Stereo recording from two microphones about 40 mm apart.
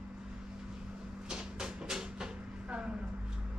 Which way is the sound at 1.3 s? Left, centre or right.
Centre.